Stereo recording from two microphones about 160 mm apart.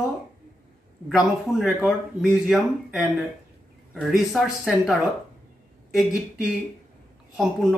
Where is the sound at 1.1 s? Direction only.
Centre (ahead or behind).